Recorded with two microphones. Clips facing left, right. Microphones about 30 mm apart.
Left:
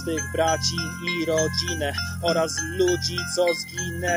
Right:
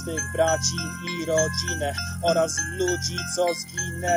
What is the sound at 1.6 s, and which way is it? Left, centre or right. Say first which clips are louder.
Music: left 1 dB; left.